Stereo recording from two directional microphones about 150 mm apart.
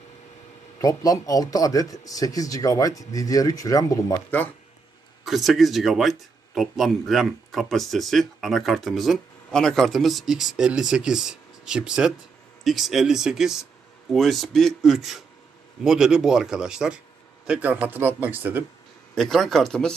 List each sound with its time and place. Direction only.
0.7 s a man's voice: 25° left (ahead or behind)
5.2 s speech: centre (ahead or behind)
19.1 s speech: centre (ahead or behind)